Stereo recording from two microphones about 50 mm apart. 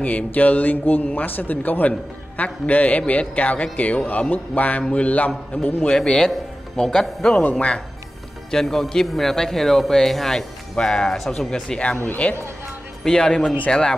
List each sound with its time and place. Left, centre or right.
0.0 s speech: left
4.8 s mantra: left
5.5 s speech: left
5.9 s speech: centre
7.5 s mantra: left
8.5 s speech: centre
12.2 s mantra: left
13.0 s speech: centre